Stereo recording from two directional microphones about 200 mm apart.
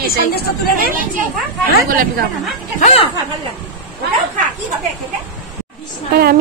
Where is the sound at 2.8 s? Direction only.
30° left (ahead or behind).